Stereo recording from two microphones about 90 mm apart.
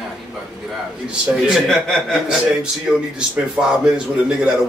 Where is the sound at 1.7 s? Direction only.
5° left (ahead or behind).